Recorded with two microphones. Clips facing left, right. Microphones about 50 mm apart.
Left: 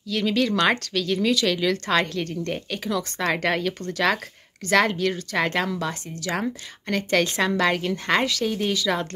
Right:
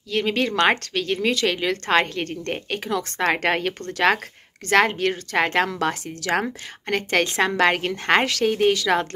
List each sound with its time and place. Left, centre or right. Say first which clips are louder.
0.1 s speech: even; right
6.9 s speech: right 1 dB; right